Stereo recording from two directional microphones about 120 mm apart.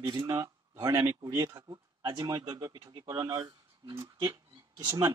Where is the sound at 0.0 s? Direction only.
35° right (ahead or behind).